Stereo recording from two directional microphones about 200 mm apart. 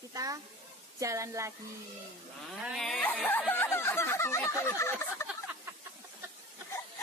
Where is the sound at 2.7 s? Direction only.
Centre (ahead or behind).